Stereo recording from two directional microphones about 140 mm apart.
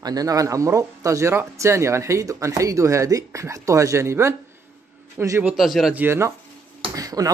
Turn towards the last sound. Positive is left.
turn(degrees=-25)  # may be behind; listen again after turning